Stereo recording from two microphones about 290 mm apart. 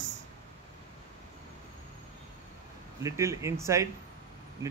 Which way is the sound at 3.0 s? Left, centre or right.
Centre.